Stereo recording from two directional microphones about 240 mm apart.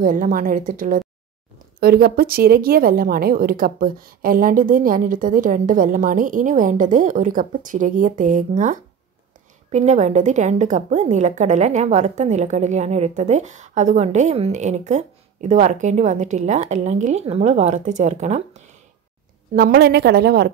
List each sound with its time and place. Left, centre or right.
0.0 s a woman's voice: right
19.5 s a woman's voice: right